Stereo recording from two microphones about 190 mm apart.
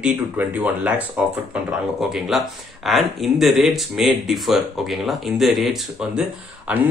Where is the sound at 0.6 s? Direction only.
10° right (ahead or behind).